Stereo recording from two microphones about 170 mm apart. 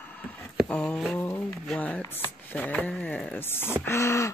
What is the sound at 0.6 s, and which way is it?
Speech, 5° left (ahead or behind).